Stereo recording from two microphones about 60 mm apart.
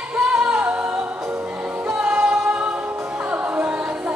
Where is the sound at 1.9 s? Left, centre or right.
Centre.